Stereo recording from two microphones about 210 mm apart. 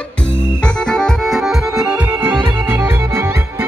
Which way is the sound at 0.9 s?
5° left (ahead or behind).